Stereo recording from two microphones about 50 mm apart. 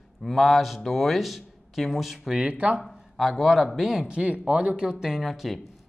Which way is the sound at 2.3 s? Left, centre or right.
Right.